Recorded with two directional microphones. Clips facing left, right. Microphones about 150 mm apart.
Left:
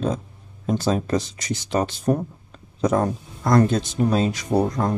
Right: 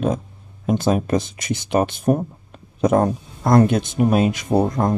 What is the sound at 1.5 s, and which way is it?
Speech, 55° right (ahead or behind).